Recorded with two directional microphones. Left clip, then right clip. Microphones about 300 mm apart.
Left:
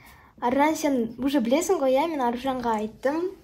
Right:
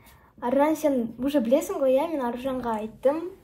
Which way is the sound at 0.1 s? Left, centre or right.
Left.